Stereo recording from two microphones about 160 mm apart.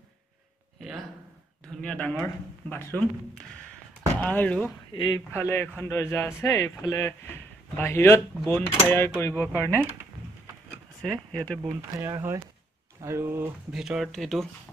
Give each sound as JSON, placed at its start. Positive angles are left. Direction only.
{"t": 0.7, "sound": "a sound", "side_deg": 0}
{"t": 1.8, "sound": "speech", "side_deg": 10}
{"t": 4.2, "sound": "speech", "side_deg": 10}
{"t": 11.0, "sound": "speech", "side_deg": 5}
{"t": 12.0, "sound": "speech", "side_deg": -15}
{"t": 13.7, "sound": "speech", "side_deg": -5}